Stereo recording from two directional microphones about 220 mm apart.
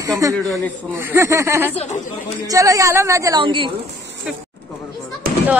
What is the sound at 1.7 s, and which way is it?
Speech, 30° left (ahead or behind).